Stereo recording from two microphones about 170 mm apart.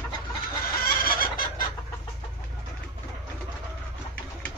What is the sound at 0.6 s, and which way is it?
Chicken, 60° left (ahead or behind).